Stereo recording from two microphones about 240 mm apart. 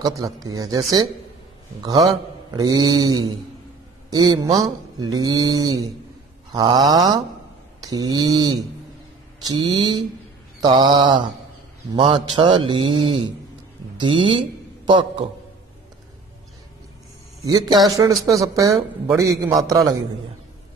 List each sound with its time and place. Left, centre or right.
0.0 s speech: centre
2.5 s speech: centre
9.8 s a man's voice: centre
17.5 s speech: centre